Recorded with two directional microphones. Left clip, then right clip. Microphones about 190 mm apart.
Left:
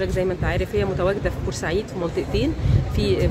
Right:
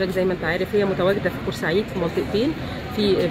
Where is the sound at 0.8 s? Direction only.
30° left (ahead or behind).